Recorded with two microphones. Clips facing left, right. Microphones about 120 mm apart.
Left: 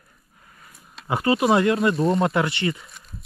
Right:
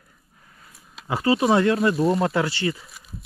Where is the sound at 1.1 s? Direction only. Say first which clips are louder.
Even; 25° left (ahead or behind).